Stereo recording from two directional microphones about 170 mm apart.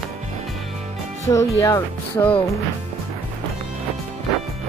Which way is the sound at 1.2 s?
15° left (ahead or behind).